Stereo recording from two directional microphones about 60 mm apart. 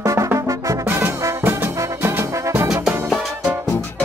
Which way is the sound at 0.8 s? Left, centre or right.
Right.